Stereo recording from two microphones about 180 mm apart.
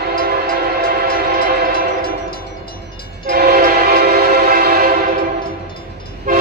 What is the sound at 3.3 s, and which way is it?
Train, 55° right (ahead or behind).